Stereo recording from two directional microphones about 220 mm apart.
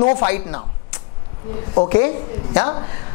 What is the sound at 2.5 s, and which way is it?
Speech, 20° left (ahead or behind).